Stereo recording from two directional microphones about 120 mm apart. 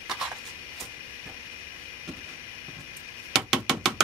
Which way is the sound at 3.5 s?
5° right (ahead or behind).